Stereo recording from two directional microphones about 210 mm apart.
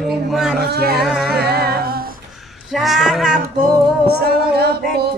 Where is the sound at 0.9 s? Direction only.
Centre (ahead or behind).